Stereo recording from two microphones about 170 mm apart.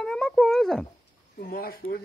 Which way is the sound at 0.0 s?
5° left (ahead or behind).